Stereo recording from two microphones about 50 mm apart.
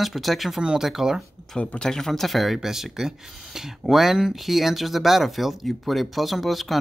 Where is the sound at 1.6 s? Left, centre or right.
Left.